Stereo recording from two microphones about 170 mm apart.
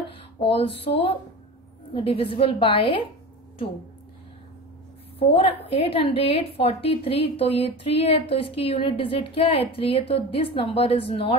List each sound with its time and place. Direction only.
0.4 s a woman's voice: 35° left (ahead or behind)
5.3 s a woman's voice: 35° left (ahead or behind)